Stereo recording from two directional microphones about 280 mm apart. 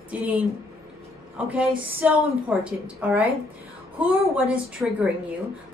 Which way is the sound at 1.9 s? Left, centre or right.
Centre.